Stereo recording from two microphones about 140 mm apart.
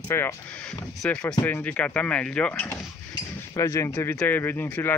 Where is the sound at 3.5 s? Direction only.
20° left (ahead or behind).